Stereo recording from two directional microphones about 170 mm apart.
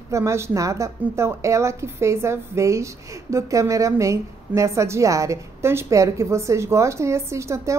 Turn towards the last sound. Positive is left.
turn(degrees=-15)  # may be behind; listen again after turning